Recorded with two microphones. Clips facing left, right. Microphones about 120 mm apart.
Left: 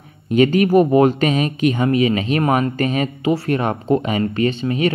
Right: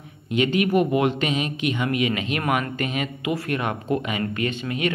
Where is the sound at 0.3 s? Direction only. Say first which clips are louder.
Left 7 dB; 40° left (ahead or behind).